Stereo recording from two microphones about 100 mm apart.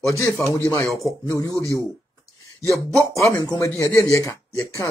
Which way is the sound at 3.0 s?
30° left (ahead or behind).